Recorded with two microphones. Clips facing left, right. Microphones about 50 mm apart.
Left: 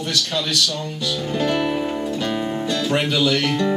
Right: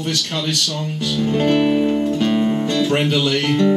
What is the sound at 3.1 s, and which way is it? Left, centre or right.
Speech, centre.